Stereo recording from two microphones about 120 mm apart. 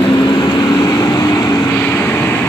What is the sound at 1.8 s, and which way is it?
Vehicle, 15° left (ahead or behind).